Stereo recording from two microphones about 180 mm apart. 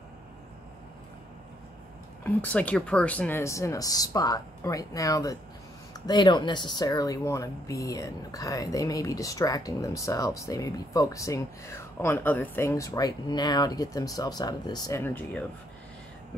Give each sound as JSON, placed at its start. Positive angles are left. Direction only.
{"t": 2.2, "sound": "speech", "side_deg": 10}